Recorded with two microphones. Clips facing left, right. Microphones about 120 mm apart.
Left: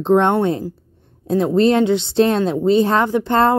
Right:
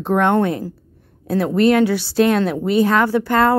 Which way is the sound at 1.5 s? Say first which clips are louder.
Even; 25° left (ahead or behind).